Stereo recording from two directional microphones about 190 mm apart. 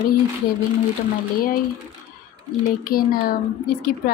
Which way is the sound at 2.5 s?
Centre (ahead or behind).